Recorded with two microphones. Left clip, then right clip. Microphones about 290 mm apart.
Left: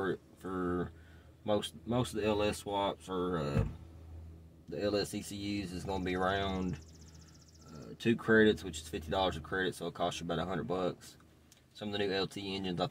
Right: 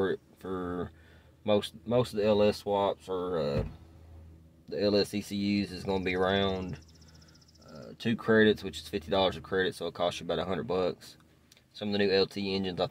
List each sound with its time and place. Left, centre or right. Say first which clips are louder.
0.0 s a sound: right 5 dB; right
1.4 s speech: right 5 dB; right
4.6 s speech: right 6 dB; right
8.0 s speech: right 2 dB; right